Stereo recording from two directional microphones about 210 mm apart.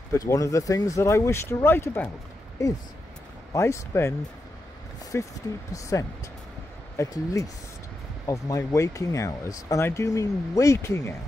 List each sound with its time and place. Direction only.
0.1 s speech: 15° left (ahead or behind)
5.1 s speech: 10° left (ahead or behind)